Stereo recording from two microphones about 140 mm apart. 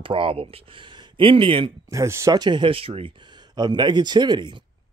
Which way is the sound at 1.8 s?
20° right (ahead or behind).